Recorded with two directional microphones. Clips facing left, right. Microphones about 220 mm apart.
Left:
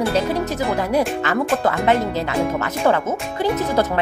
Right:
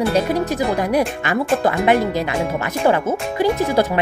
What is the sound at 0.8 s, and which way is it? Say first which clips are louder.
Speech: even; 15° right (ahead or behind).